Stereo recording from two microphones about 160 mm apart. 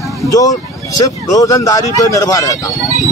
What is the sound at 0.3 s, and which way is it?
Speech, 20° left (ahead or behind).